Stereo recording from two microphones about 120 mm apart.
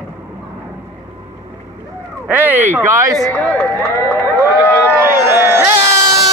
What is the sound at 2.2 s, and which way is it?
Speech, 15° right (ahead or behind).